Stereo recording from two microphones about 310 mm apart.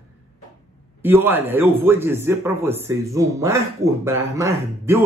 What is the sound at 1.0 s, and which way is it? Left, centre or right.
Speech, centre.